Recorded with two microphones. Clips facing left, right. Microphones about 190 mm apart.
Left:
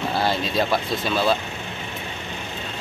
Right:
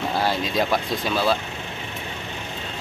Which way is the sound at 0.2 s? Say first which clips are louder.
Left 1 dB; 10° right (ahead or behind).